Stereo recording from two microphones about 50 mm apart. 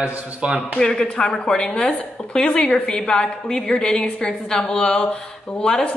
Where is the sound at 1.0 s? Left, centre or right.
Left.